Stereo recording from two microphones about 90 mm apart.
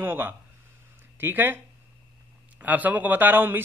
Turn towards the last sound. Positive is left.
turn(degrees=-20)  # may be behind; listen again after turning